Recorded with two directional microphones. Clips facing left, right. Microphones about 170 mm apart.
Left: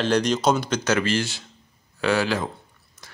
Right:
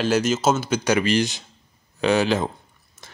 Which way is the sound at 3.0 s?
25° right (ahead or behind).